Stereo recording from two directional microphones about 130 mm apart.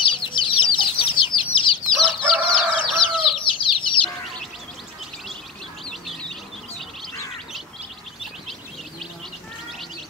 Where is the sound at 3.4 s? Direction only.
40° left (ahead or behind).